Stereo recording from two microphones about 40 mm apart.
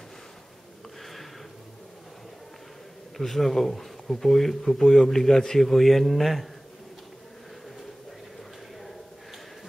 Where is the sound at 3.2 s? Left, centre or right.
Centre.